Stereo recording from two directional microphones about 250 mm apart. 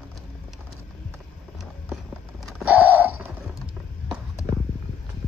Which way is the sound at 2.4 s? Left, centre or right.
Centre.